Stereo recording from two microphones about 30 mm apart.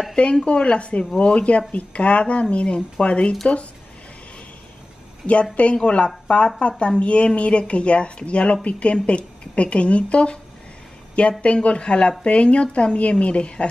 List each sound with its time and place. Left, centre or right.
0.1 s a woman's voice: left
5.2 s a woman's voice: left